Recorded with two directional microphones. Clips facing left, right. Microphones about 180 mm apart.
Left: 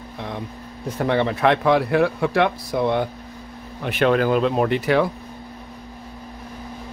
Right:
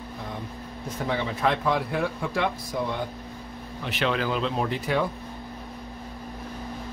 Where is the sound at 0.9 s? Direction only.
65° left (ahead or behind).